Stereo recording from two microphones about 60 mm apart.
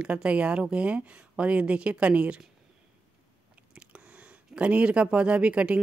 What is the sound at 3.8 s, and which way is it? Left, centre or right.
Speech, right.